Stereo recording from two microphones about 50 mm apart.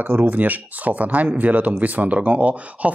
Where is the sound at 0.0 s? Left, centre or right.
Right.